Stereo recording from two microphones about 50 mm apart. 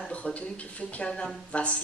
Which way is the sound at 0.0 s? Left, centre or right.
Left.